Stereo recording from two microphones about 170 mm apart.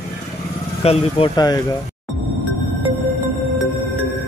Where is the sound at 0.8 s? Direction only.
35° left (ahead or behind).